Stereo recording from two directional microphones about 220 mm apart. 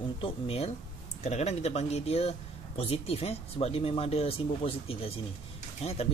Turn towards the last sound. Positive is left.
turn(degrees=25)  # may be behind; listen again after turning